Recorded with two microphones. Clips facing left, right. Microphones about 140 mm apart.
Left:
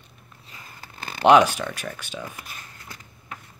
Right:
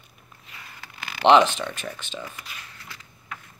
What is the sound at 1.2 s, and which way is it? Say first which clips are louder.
Speech: left 1 dB; 10° left (ahead or behind).